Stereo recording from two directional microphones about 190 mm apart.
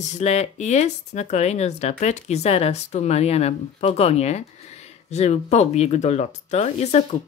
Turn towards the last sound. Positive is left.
turn(degrees=35)  # may be behind; listen again after turning